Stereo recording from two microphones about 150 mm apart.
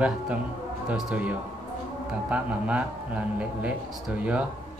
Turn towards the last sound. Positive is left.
turn(degrees=-10)  # may be behind; listen again after turning